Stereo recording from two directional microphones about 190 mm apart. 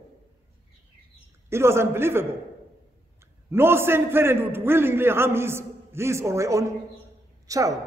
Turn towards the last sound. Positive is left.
turn(degrees=-15)  # may be behind; listen again after turning